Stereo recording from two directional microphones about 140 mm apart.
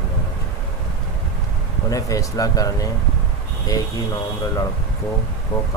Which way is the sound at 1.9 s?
25° left (ahead or behind).